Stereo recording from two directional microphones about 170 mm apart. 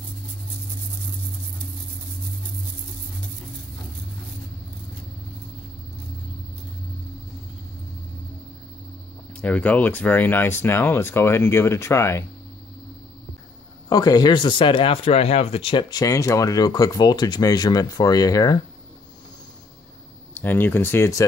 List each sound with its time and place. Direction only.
9.3 s speech: 10° left (ahead or behind)
13.8 s speech: 20° left (ahead or behind)
20.3 s speech: 10° left (ahead or behind)